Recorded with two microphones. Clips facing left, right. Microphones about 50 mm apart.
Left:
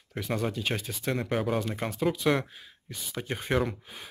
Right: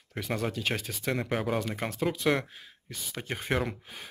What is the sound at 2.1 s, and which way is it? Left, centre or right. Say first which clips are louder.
Speech: left 2 dB; right.